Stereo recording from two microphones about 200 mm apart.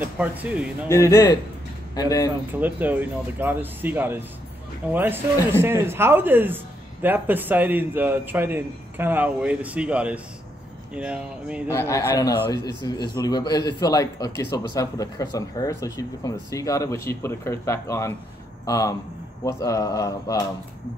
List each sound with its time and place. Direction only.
0.0 s speech: 10° right (ahead or behind)
0.8 s a man's voice: 15° left (ahead or behind)
2.6 s speech: 10° right (ahead or behind)
11.7 s a man's voice: 15° left (ahead or behind)